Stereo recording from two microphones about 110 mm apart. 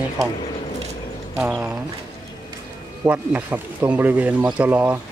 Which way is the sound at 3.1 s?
15° right (ahead or behind).